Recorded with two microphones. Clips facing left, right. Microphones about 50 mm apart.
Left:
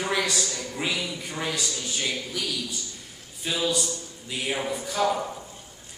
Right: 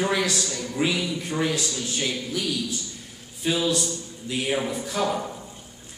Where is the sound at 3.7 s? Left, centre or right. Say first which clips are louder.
Right 2 dB; centre.